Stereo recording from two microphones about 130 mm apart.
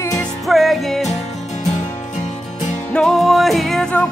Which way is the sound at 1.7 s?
65° left (ahead or behind).